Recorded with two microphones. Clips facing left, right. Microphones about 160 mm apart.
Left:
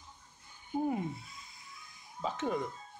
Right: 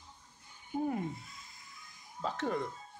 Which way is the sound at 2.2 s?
10° left (ahead or behind).